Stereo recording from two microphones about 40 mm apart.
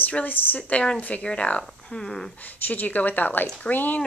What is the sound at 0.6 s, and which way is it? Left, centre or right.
Speech, left.